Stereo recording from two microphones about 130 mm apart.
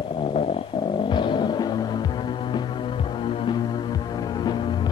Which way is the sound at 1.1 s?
35° left (ahead or behind).